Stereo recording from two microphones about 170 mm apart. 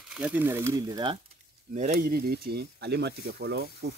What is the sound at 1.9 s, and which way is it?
Speech, 65° right (ahead or behind).